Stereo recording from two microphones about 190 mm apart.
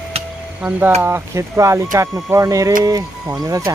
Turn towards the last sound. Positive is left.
turn(degrees=-15)  # may be behind; listen again after turning